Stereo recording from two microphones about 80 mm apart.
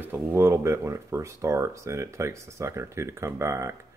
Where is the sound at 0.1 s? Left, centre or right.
Right.